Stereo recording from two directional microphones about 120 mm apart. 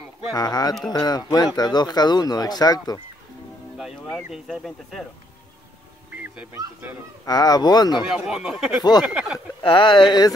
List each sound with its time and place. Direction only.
0.3 s speech: 35° left (ahead or behind)
3.7 s music: 5° right (ahead or behind)
4.2 s speech: 5° right (ahead or behind)
7.2 s speech: 35° left (ahead or behind)
8.1 s speech: 5° right (ahead or behind)
9.6 s speech: 45° left (ahead or behind)